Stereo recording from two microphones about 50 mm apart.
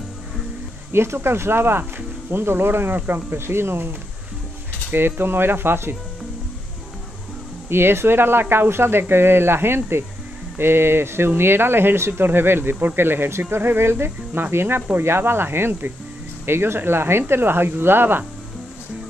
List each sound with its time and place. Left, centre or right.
0.9 s speech: right
4.9 s speech: right
7.7 s speech: right